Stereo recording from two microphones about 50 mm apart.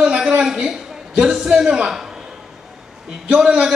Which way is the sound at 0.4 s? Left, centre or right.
Centre.